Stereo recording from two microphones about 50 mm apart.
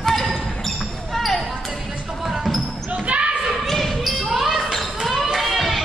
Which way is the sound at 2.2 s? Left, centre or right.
Centre.